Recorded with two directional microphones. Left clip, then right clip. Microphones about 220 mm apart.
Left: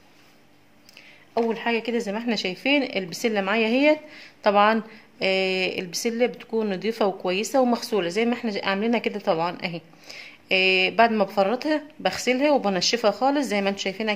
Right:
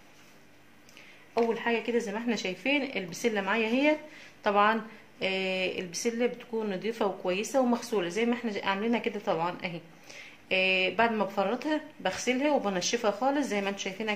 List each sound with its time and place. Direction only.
1.3 s speech: 50° left (ahead or behind)